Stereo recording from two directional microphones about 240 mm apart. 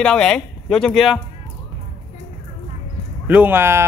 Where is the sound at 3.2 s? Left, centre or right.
Centre.